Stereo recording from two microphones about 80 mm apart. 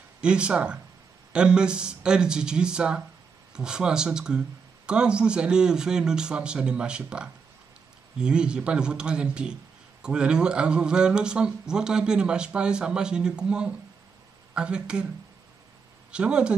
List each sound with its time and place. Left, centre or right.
0.2 s speech: centre
16.1 s speech: centre